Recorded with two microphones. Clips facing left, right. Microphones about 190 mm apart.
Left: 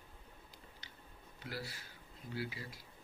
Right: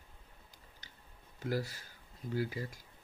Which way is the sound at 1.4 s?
45° right (ahead or behind).